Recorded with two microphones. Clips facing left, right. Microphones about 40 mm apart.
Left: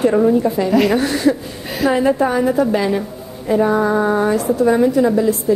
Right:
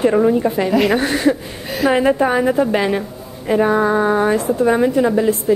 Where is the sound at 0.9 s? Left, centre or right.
Right.